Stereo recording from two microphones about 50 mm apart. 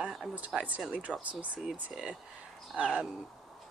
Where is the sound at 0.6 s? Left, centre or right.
Right.